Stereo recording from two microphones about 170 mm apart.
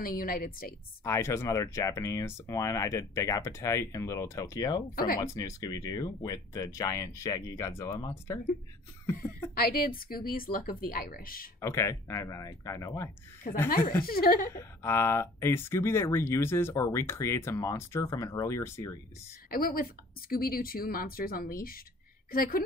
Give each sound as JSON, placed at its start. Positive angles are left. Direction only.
{"t": 0.0, "sound": "speech", "side_deg": 60}
{"t": 1.0, "sound": "speech", "side_deg": 15}
{"t": 4.9, "sound": "speech", "side_deg": 60}
{"t": 5.2, "sound": "speech", "side_deg": 20}
{"t": 9.6, "sound": "speech", "side_deg": 60}
{"t": 11.6, "sound": "speech", "side_deg": 15}
{"t": 14.0, "sound": "speech", "side_deg": 60}
{"t": 14.5, "sound": "speech", "side_deg": 15}
{"t": 19.5, "sound": "speech", "side_deg": 60}